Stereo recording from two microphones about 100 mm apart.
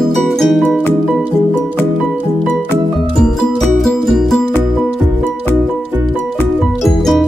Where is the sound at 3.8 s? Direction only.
Centre (ahead or behind).